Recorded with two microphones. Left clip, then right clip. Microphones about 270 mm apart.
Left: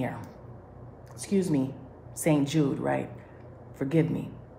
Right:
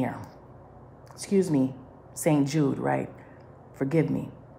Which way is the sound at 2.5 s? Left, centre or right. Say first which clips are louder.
Right 1 dB; right.